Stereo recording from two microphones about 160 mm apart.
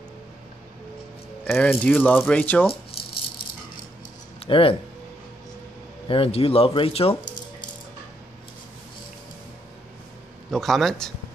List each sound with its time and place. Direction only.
1.4 s speech: 5° left (ahead or behind)
4.4 s speech: 35° left (ahead or behind)
6.0 s speech: 35° left (ahead or behind)
10.5 s a man's voice: centre (ahead or behind)